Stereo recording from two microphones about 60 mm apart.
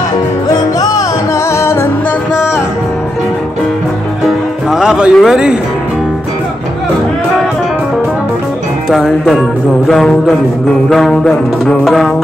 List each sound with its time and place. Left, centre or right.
1.6 s music: left
4.6 s music: centre
5.1 s speech: centre
8.9 s music: centre